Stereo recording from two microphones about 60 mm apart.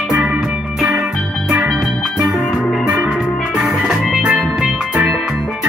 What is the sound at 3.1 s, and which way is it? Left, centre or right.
Music, centre.